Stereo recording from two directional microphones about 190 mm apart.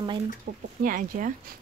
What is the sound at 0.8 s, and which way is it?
Speech, 45° right (ahead or behind).